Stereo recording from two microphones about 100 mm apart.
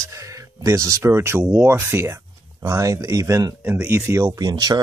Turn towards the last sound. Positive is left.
turn(degrees=-40)  # may be behind; listen again after turning